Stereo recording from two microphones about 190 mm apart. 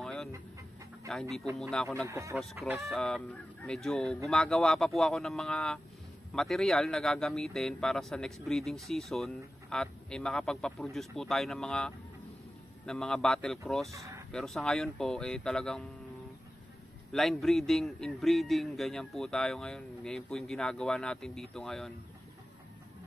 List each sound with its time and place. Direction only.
0.0 s chicken: centre (ahead or behind)
1.6 s speech: centre (ahead or behind)
2.0 s speech: 15° right (ahead or behind)
2.6 s speech: centre (ahead or behind)
13.9 s a sound: 15° right (ahead or behind)
14.3 s speech: centre (ahead or behind)
17.1 s speech: centre (ahead or behind)